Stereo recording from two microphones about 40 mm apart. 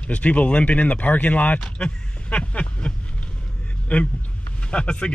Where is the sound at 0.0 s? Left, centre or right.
Left.